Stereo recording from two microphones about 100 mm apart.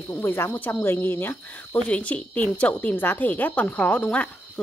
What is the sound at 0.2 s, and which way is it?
A woman's voice, 20° left (ahead or behind).